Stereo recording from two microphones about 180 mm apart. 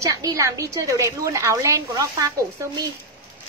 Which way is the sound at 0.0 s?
20° right (ahead or behind).